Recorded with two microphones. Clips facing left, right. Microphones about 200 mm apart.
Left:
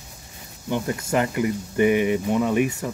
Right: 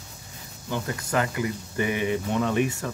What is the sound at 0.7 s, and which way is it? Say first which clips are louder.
Speech: left 5 dB; 20° left (ahead or behind).